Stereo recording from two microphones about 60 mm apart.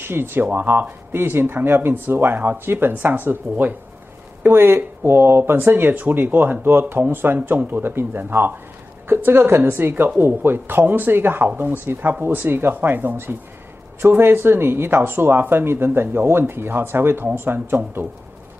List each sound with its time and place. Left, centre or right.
0.0 s a woman's voice: right